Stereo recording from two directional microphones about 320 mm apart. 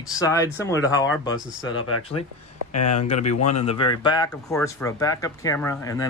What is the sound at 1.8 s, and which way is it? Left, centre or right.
Speech, left.